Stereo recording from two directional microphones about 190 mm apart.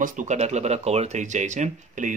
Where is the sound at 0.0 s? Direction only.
40° right (ahead or behind).